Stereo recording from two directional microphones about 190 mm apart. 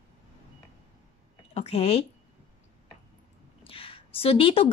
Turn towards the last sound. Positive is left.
turn(degrees=30)  # may be behind; listen again after turning